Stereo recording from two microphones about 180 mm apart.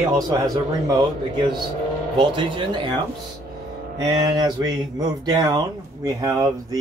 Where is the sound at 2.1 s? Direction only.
25° right (ahead or behind).